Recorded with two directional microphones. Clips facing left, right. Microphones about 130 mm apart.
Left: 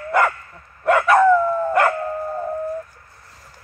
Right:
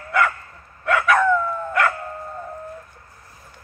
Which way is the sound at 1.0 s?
30° left (ahead or behind).